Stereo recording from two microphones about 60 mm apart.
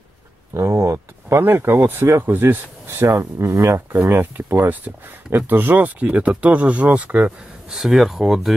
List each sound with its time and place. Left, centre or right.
0.6 s speech: right
1.3 s speech: right
3.2 s speech: right
4.2 s speech: right
7.7 s speech: centre